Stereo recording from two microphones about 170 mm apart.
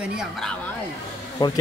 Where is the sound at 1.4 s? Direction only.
25° left (ahead or behind).